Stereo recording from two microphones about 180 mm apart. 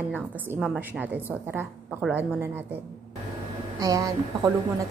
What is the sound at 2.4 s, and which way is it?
Speech, 10° right (ahead or behind).